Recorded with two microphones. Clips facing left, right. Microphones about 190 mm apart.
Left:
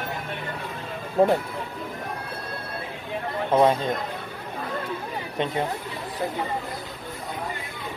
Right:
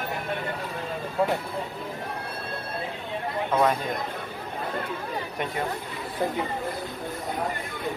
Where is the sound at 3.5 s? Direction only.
25° left (ahead or behind).